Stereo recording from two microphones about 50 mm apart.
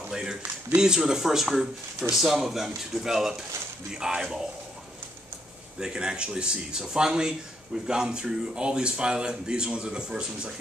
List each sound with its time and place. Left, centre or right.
0.1 s speech: centre
5.8 s speech: centre